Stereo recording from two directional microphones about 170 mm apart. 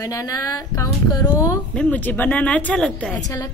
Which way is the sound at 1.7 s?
10° left (ahead or behind).